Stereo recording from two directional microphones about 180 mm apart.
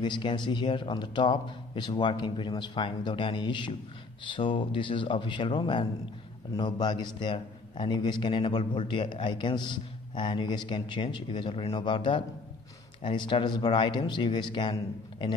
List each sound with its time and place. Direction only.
0.0 s a man's voice: 25° left (ahead or behind)